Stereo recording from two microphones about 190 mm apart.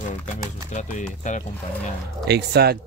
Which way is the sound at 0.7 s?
40° left (ahead or behind).